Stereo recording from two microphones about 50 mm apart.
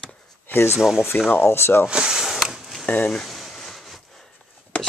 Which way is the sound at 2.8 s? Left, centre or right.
Left.